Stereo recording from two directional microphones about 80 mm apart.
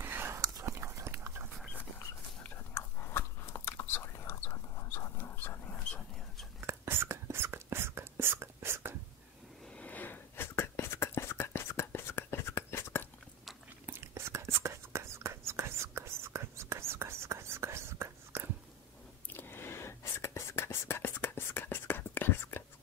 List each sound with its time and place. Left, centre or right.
0.0 s whispering: right
0.4 s whispering: right
0.7 s dog: right
2.4 s biting: left
4.9 s dog: left
6.6 s whispering: right
9.8 s whispering: left
13.8 s whispering: right
19.3 s whispering: left